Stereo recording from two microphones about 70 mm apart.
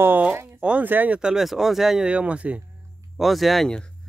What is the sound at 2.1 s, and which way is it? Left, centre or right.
Speech, centre.